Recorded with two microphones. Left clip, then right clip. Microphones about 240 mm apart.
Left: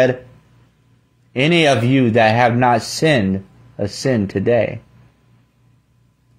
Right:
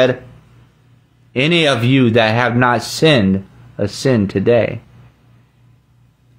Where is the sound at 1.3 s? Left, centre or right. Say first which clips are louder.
Even; centre.